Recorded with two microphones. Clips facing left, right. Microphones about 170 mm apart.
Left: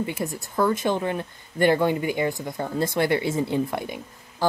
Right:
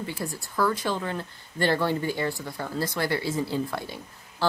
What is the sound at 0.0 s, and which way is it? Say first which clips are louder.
Speech: left 5 dB; 20° left (ahead or behind).